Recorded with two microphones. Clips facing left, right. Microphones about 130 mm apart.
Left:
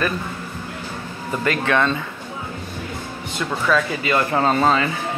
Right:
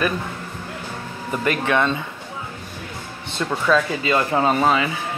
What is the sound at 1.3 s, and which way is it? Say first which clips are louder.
Speech: even; 15° right (ahead or behind).